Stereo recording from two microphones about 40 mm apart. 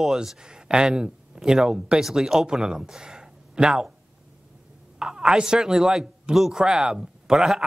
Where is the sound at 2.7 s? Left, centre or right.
Centre.